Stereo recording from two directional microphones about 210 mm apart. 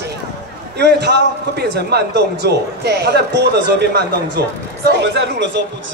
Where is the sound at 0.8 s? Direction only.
55° right (ahead or behind).